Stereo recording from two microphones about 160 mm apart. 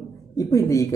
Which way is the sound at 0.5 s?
20° left (ahead or behind).